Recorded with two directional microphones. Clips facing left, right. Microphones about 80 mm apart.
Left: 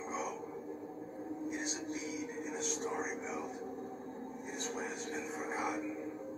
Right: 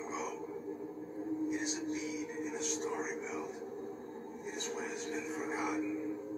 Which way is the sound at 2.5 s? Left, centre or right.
Left.